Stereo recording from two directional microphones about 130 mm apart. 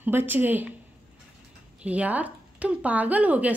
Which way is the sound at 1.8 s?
10° right (ahead or behind).